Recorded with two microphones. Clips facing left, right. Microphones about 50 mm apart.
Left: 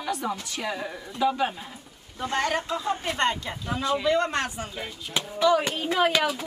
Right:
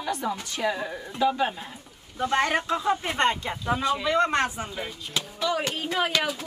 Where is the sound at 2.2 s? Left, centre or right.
Right.